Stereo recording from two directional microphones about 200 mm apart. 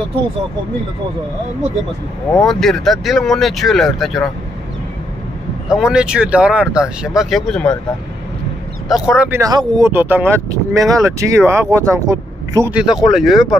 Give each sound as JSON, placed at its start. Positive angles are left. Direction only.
{"t": 2.4, "sound": "speech", "side_deg": 0}
{"t": 5.7, "sound": "speech", "side_deg": -5}
{"t": 8.8, "sound": "speech", "side_deg": 0}
{"t": 9.4, "sound": "speech", "side_deg": -20}
{"t": 12.7, "sound": "speech", "side_deg": 0}